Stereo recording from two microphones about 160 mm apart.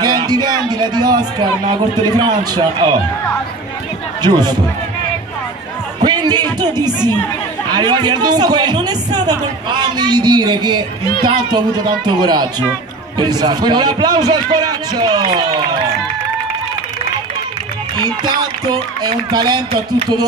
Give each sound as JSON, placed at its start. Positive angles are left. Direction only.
{"t": 0.0, "sound": "a man's voice", "side_deg": -25}
{"t": 4.2, "sound": "speech", "side_deg": -25}
{"t": 6.0, "sound": "music", "side_deg": -25}
{"t": 7.7, "sound": "speech", "side_deg": -25}
{"t": 12.1, "sound": "speech", "side_deg": -25}
{"t": 18.2, "sound": "speech", "side_deg": -25}
{"t": 19.7, "sound": "speech", "side_deg": -35}